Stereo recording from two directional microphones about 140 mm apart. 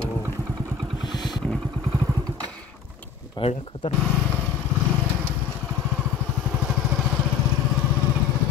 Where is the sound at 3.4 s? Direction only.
45° left (ahead or behind).